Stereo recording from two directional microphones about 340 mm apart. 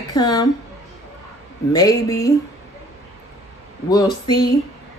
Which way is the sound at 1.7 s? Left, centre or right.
Centre.